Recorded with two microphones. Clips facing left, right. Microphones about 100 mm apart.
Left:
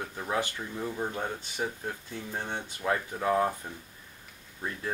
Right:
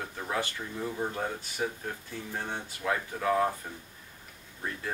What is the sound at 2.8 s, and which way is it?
Speech, 15° left (ahead or behind).